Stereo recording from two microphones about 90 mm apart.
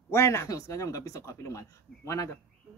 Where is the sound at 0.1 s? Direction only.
35° left (ahead or behind).